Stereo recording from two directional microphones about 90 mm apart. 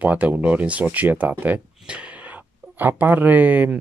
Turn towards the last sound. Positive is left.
turn(degrees=-20)  # may be behind; listen again after turning